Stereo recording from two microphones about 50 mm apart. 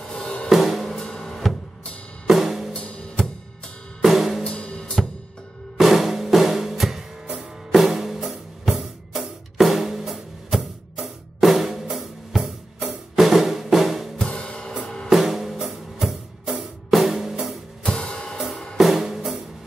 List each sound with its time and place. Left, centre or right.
0.1 s music: centre
0.5 s drum kit: centre
0.9 s drum: centre
2.2 s drum kit: centre
2.7 s music: left
4.0 s drum kit: centre
4.6 s drum kit: left
5.8 s music: centre
13.1 s drum: centre
14.1 s music: centre
15.0 s music: centre
17.8 s music: centre
18.8 s drum kit: centre